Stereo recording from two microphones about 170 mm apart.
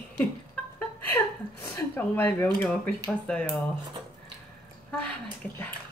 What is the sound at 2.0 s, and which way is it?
A woman's voice, 10° left (ahead or behind).